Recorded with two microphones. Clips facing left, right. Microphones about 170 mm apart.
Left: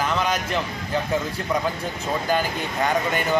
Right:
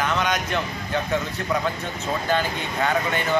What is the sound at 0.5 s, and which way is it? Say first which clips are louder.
Speech: even; 5° left (ahead or behind).